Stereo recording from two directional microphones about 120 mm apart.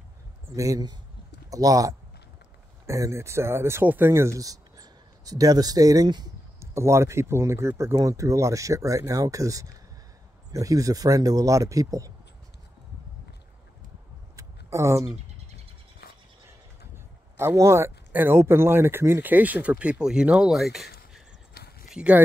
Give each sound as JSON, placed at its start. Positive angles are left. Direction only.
{"t": 0.6, "sound": "a man's voice", "side_deg": -30}
{"t": 6.6, "sound": "speech", "side_deg": -25}
{"t": 14.3, "sound": "a sound", "side_deg": -25}
{"t": 17.4, "sound": "speech", "side_deg": -20}